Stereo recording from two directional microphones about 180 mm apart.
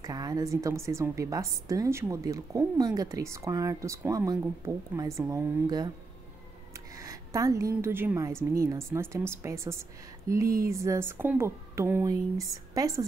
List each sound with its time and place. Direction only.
0.0 s a woman's voice: 20° right (ahead or behind)
6.7 s a sound: 20° right (ahead or behind)
7.8 s a woman's voice: 10° right (ahead or behind)